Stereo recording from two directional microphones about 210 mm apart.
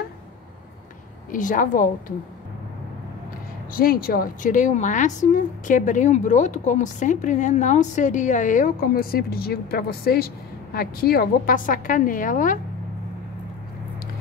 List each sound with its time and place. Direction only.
1.3 s speech: 40° left (ahead or behind)
3.7 s speech: 45° left (ahead or behind)